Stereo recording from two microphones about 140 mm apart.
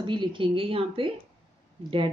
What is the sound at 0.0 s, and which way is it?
Speech, 35° right (ahead or behind).